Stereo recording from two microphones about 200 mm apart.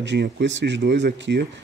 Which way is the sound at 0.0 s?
60° right (ahead or behind).